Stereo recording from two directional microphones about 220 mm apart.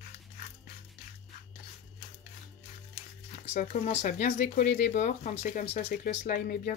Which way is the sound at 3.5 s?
35° left (ahead or behind).